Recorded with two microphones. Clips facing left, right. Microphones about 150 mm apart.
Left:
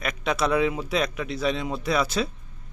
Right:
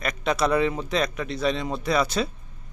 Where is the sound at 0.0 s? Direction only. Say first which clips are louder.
Right 1 dB; centre (ahead or behind).